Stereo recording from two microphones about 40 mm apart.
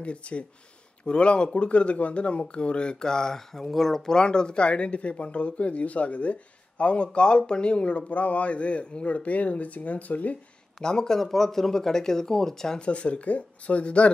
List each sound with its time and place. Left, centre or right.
0.0 s speech: left; by 4.2 s centre
4.2 s speech: left
10.8 s speech: centre
12.8 s speech: left